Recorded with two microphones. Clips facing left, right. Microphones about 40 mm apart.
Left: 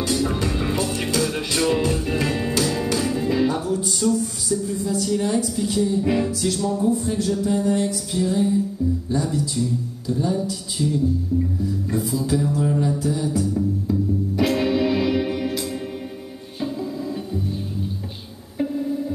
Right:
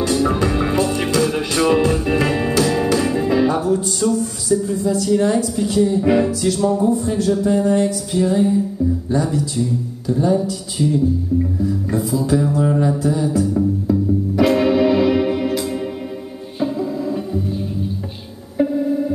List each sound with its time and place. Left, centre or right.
0.0 s music: centre
4.0 s a sound: centre
5.0 s a woman's voice: centre
5.8 s mantra: right
7.1 s a woman's voice: centre
7.4 s mantra: right
9.2 s a woman's voice: centre
10.1 s mantra: right
12.2 s mantra: right
13.8 s music: centre
18.6 s music: right